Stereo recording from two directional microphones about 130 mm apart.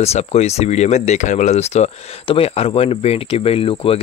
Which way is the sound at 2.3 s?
50° left (ahead or behind).